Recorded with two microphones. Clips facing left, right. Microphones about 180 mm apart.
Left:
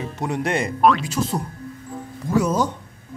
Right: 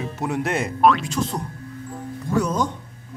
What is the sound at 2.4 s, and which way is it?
Speech, 5° left (ahead or behind).